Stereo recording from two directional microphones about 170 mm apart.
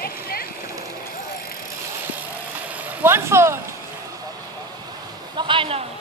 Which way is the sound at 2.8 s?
15° right (ahead or behind).